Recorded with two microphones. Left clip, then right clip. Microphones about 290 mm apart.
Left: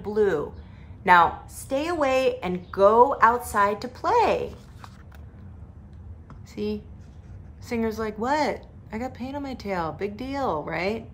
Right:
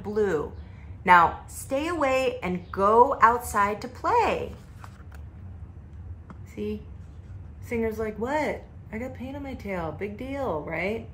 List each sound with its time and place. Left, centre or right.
0.0 s a woman's voice: centre
6.5 s a woman's voice: centre